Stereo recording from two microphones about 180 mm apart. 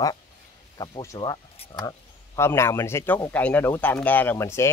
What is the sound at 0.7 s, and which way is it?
Speech, 20° left (ahead or behind).